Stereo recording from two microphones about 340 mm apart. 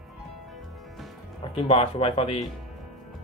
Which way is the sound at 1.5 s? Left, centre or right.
Centre.